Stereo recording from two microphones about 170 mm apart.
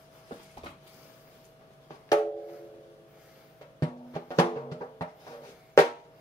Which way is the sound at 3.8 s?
20° left (ahead or behind).